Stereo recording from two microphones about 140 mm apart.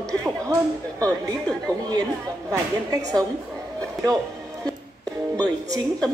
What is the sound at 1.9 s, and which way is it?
A woman's voice, 25° right (ahead or behind).